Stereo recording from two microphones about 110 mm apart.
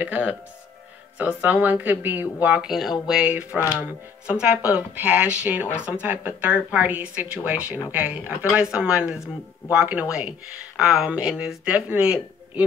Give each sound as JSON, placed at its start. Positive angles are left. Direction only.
{"t": 0.0, "sound": "speech", "side_deg": -15}
{"t": 4.6, "sound": "speech", "side_deg": 35}
{"t": 4.9, "sound": "speech", "side_deg": -15}